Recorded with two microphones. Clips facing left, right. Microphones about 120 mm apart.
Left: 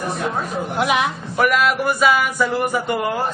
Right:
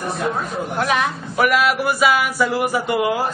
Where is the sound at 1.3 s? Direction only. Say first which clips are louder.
Even; 5° right (ahead or behind).